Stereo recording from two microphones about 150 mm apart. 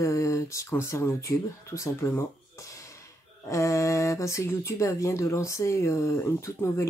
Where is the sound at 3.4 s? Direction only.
20° left (ahead or behind).